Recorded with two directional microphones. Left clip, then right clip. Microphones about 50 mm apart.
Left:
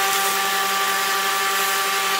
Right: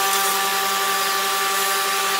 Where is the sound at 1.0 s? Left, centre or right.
Left.